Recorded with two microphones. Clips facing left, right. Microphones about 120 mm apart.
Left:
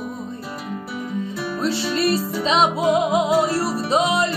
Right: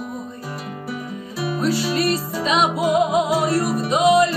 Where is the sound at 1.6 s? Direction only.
25° left (ahead or behind).